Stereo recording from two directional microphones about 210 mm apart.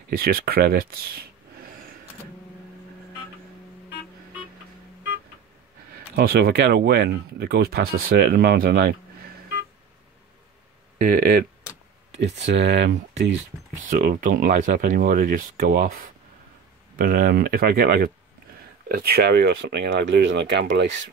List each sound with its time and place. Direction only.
0.1 s speech: 45° right (ahead or behind)
6.1 s speech: 45° right (ahead or behind)
11.0 s speech: 45° right (ahead or behind)
12.1 s speech: 55° right (ahead or behind)
13.8 s speech: 40° right (ahead or behind); by 21.1 s 60° right (ahead or behind)